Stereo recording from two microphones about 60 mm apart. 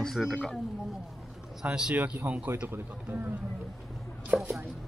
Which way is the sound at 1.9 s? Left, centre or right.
Right.